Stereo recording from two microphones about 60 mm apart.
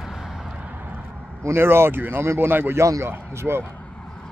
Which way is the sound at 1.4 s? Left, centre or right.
Right.